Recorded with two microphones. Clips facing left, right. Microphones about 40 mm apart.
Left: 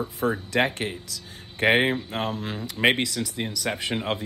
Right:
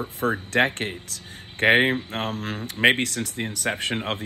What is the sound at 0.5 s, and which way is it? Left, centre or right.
Speech, right.